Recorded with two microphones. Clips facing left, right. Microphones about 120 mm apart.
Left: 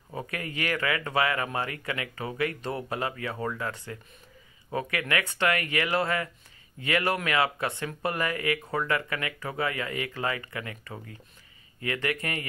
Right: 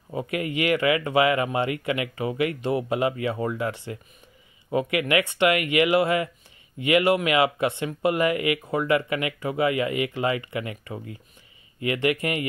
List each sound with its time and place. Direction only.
0.1 s speech: 15° right (ahead or behind)